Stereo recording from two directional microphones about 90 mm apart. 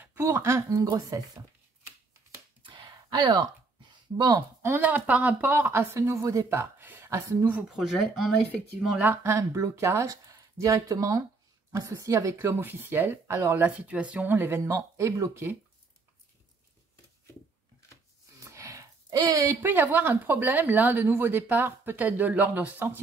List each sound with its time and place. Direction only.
0.0 s speech: 30° right (ahead or behind)
2.6 s a sound: 70° right (ahead or behind); by 3.4 s 50° right (ahead or behind)
4.1 s a woman's voice: 35° right (ahead or behind)
5.9 s a woman's voice: 35° right (ahead or behind)
7.7 s speech: 5° right (ahead or behind)
9.0 s a woman's voice: 25° right (ahead or behind)
14.3 s speech: 25° right (ahead or behind)
18.4 s a sound: 35° right (ahead or behind)
19.6 s a woman's voice: 20° right (ahead or behind)